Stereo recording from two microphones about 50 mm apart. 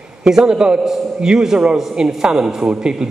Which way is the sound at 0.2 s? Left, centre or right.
Centre.